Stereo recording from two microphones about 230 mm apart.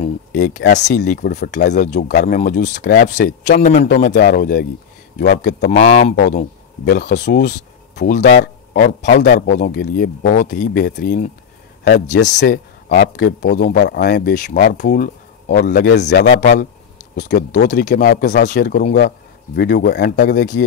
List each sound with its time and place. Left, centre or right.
0.3 s a man's voice: left
5.7 s a man's voice: left
7.2 s a man's voice: left
15.9 s a man's voice: left